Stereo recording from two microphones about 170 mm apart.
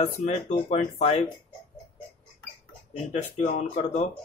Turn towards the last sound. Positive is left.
turn(degrees=40)  # may be behind; listen again after turning